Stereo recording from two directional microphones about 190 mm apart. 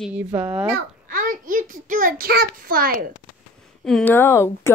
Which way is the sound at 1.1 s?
45° right (ahead or behind).